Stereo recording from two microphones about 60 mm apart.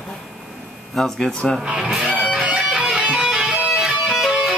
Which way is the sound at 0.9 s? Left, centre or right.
Centre.